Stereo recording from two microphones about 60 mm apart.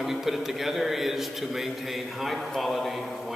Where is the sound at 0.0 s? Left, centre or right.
Centre.